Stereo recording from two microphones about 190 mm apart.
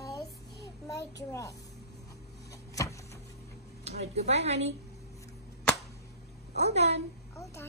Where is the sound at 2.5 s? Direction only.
15° left (ahead or behind).